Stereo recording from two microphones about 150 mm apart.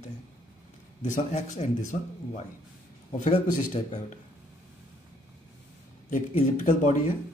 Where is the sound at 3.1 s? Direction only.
55° left (ahead or behind).